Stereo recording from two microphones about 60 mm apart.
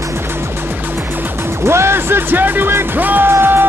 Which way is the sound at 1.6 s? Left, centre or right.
Right.